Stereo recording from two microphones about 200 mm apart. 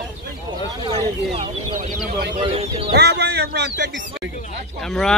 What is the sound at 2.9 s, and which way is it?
Speech, 55° right (ahead or behind).